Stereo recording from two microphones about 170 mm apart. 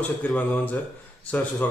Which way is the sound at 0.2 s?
10° left (ahead or behind).